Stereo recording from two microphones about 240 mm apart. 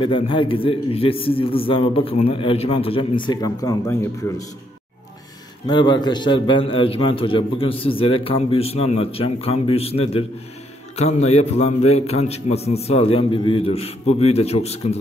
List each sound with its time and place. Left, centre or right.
0.0 s a man's voice: left
5.7 s a man's voice: centre